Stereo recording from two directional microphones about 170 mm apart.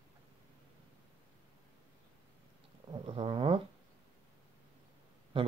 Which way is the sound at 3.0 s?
30° right (ahead or behind).